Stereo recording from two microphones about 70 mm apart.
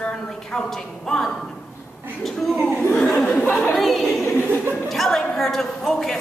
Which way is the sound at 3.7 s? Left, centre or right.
Centre.